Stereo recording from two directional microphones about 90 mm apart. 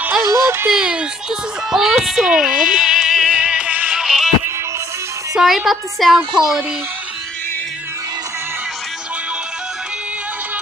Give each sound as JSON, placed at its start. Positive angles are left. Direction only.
{"t": 0.2, "sound": "speech", "side_deg": -35}
{"t": 0.7, "sound": "a child's voice", "side_deg": -10}
{"t": 5.3, "sound": "a woman's voice", "side_deg": -5}